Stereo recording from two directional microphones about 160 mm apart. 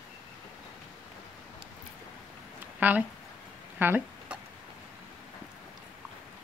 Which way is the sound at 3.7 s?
10° right (ahead or behind).